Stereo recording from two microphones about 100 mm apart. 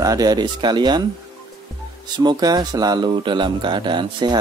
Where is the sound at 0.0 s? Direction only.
40° right (ahead or behind).